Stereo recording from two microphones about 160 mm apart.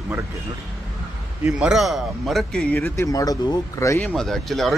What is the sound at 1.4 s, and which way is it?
A man's voice, 5° right (ahead or behind).